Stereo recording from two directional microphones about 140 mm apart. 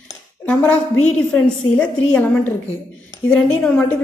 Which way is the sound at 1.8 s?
10° left (ahead or behind).